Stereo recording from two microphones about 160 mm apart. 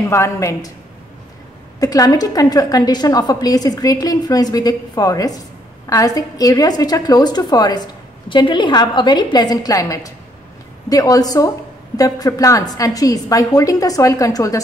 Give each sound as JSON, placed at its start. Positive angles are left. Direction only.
{"t": 0.1, "sound": "a woman's voice", "side_deg": 20}
{"t": 1.8, "sound": "a woman's voice", "side_deg": 25}